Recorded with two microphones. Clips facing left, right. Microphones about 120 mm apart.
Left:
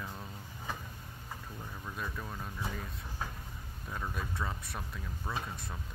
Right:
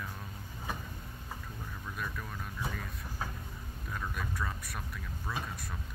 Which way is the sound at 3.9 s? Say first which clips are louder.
Even; 25° left (ahead or behind).